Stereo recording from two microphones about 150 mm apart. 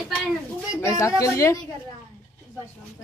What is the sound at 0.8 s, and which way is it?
Speech, 20° left (ahead or behind).